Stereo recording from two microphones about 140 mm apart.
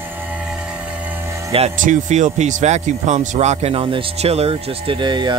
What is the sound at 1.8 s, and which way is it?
Speech, 60° right (ahead or behind).